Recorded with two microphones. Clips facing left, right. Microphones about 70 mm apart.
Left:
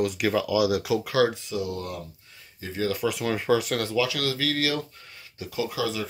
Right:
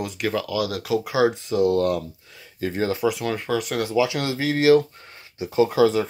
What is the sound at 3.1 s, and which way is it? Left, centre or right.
Speech, centre.